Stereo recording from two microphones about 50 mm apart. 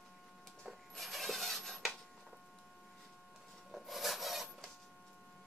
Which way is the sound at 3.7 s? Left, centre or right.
Centre.